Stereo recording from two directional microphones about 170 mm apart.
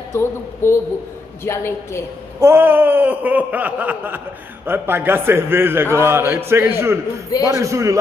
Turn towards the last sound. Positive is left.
turn(degrees=-15)  # may be behind; listen again after turning